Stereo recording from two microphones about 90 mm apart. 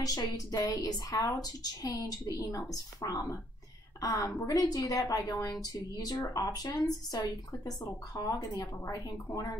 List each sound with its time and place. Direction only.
0.0 s a woman's voice: 45° left (ahead or behind)